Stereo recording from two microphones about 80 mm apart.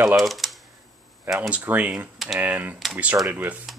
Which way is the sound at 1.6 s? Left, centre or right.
Right.